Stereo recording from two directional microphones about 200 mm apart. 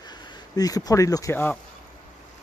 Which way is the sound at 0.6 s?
20° left (ahead or behind).